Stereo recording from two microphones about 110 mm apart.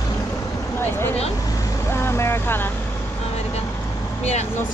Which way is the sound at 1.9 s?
25° left (ahead or behind).